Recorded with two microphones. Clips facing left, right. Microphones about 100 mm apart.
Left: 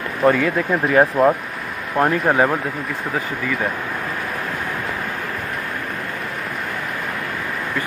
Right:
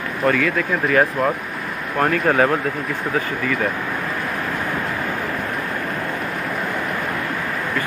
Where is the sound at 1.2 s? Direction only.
10° left (ahead or behind).